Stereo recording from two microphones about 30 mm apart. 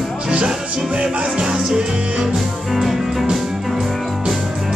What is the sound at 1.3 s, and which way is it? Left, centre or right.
Music, right.